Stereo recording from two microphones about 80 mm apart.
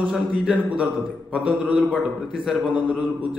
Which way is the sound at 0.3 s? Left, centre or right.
Centre.